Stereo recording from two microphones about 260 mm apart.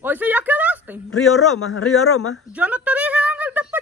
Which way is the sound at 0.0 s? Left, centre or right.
Centre.